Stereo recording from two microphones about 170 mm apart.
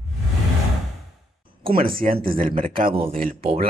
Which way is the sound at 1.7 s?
55° right (ahead or behind).